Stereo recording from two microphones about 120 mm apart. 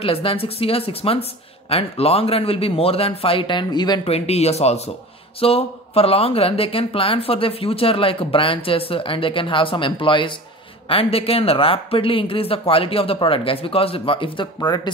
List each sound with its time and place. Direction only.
0.0 s speech: 50° left (ahead or behind)
4.1 s speech: 60° left (ahead or behind); by 14.8 s 40° left (ahead or behind)